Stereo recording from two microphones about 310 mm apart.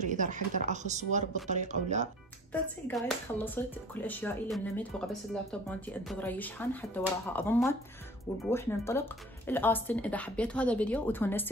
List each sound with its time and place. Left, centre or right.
0.0 s speech: right
2.5 s speech: centre